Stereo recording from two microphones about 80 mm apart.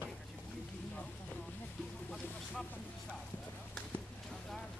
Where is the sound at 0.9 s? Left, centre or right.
Centre.